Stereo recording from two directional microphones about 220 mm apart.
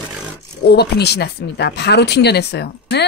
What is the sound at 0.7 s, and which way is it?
Speech, 45° left (ahead or behind).